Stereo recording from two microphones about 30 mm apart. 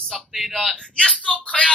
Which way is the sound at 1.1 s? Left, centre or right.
Left.